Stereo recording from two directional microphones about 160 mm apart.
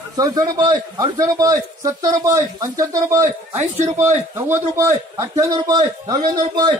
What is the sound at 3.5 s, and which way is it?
Speech, 45° right (ahead or behind).